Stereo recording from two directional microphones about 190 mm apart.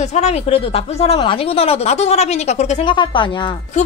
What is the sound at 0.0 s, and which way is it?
Speech, 35° left (ahead or behind).